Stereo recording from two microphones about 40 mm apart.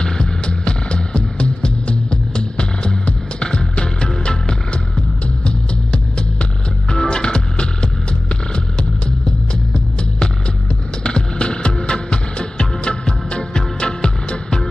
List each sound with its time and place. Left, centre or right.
0.0 s music: left
11.1 s music: left